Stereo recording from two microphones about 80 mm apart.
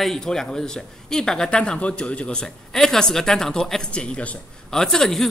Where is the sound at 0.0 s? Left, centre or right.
Centre.